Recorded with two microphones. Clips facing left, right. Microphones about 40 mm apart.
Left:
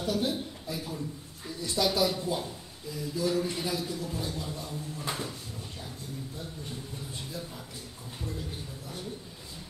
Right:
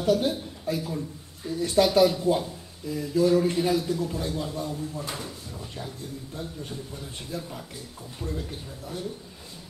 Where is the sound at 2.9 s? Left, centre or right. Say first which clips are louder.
Right 8 dB; right.